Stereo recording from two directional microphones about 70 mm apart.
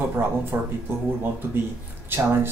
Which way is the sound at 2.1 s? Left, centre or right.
Right.